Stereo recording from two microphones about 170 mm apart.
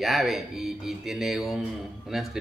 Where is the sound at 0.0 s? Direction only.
Centre (ahead or behind).